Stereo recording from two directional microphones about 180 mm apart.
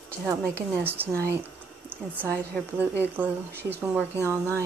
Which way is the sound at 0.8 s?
10° right (ahead or behind).